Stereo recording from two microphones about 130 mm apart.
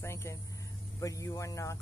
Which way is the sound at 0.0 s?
20° left (ahead or behind).